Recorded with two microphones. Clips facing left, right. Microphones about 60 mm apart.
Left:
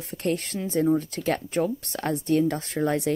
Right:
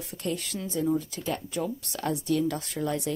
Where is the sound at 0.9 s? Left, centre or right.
Left.